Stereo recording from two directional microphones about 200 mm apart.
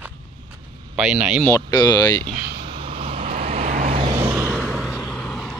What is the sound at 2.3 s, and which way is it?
Vehicle, 45° right (ahead or behind).